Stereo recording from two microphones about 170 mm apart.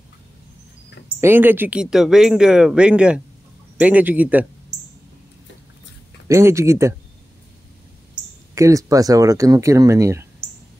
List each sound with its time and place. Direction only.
1.2 s speech: 10° right (ahead or behind)
6.2 s speech: 15° right (ahead or behind)
8.1 s speech: 15° right (ahead or behind)